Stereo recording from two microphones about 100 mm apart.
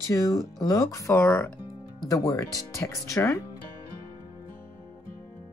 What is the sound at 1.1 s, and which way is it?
Speech, 20° left (ahead or behind).